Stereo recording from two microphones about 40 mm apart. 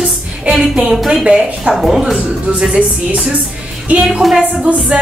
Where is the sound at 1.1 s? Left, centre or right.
Centre.